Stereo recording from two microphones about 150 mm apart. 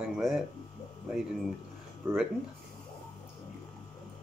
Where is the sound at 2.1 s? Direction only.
15° right (ahead or behind).